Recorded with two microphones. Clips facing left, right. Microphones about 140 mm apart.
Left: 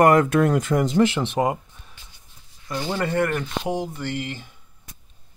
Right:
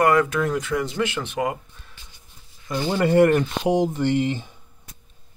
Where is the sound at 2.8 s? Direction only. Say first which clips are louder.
Right 7 dB; 15° right (ahead or behind).